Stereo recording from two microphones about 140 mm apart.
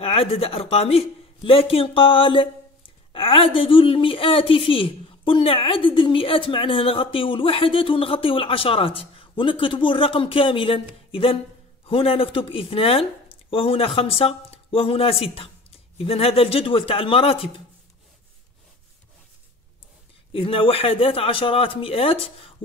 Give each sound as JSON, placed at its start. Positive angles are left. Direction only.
{"t": 0.0, "sound": "speech", "side_deg": 45}
{"t": 20.3, "sound": "speech", "side_deg": 40}